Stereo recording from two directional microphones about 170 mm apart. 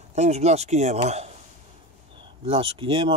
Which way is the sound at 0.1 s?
40° right (ahead or behind).